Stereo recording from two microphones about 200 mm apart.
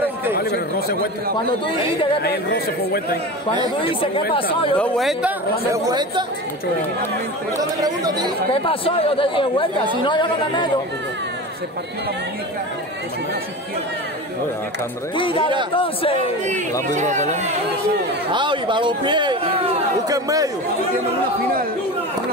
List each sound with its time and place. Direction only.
0.4 s chatter: 50° left (ahead or behind)
2.2 s speech: 50° left (ahead or behind)
4.3 s speech: 25° left (ahead or behind)
4.7 s speech: 5° left (ahead or behind)
5.7 s speech: 20° right (ahead or behind)
7.8 s speech: 20° right (ahead or behind)
8.6 s speech: 25° left (ahead or behind)
15.1 s speech: 25° left (ahead or behind)
16.9 s speech: 35° right (ahead or behind)
18.3 s a man's voice: 25° right (ahead or behind)